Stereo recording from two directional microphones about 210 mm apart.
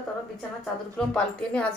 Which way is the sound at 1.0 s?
5° left (ahead or behind).